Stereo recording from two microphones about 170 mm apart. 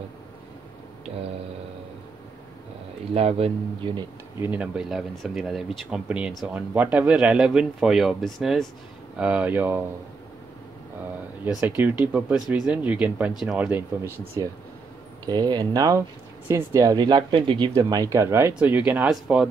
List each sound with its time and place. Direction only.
3.2 s speech: 35° right (ahead or behind)
4.4 s speech: 10° right (ahead or behind)
11.4 s speech: 10° right (ahead or behind)